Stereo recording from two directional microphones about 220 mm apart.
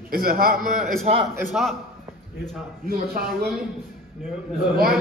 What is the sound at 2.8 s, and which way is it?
Speech, 45° right (ahead or behind).